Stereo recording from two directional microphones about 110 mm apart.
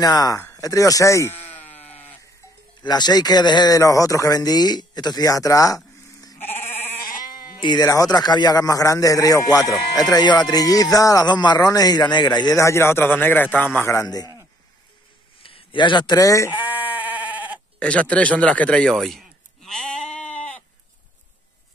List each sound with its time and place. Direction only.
0.0 s speech: 35° left (ahead or behind); by 1.8 s 15° left (ahead or behind)
1.9 s sheep: 15° left (ahead or behind)
2.8 s speech: 40° left (ahead or behind)
6.3 s sheep: 20° left (ahead or behind)
7.2 s a man's voice: 40° left (ahead or behind)
14.0 s speech: 35° left (ahead or behind)
15.4 s a man's voice: 50° left (ahead or behind); by 16.4 s 30° left (ahead or behind)
16.4 s bleat: 15° right (ahead or behind)
17.7 s a sound: 10° left (ahead or behind)